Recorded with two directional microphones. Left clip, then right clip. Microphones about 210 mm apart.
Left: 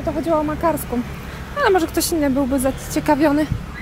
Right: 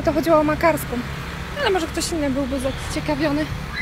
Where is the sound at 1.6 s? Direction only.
25° left (ahead or behind).